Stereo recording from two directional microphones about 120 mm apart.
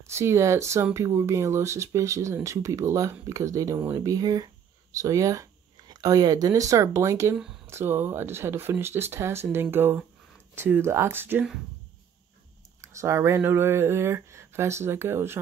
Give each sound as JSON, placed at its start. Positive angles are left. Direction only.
{"t": 0.1, "sound": "speech", "side_deg": -20}
{"t": 12.8, "sound": "speech", "side_deg": -25}